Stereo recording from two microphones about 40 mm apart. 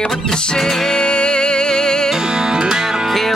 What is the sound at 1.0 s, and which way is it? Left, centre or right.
Music, left.